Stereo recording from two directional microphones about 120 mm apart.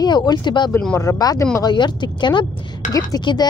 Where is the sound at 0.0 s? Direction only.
35° left (ahead or behind).